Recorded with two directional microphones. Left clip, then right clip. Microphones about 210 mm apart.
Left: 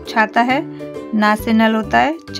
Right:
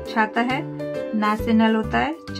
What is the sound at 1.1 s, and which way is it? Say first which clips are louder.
Speech: left 7 dB; 50° left (ahead or behind).